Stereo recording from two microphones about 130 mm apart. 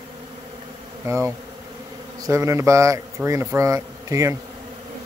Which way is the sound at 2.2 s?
25° right (ahead or behind).